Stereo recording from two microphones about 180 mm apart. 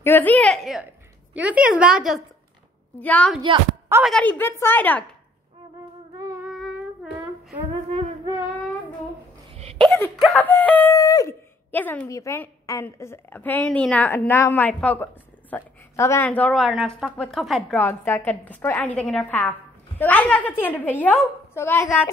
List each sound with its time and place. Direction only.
0.0 s speech: 10° left (ahead or behind)
3.0 s speech: 5° left (ahead or behind)
9.5 s hiccup: 30° right (ahead or behind)
10.2 s speech: 5° left (ahead or behind)